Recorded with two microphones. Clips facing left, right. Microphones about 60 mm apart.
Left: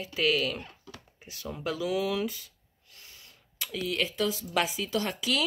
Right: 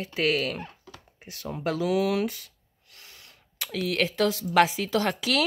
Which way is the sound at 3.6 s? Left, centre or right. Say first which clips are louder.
Right 4 dB; right.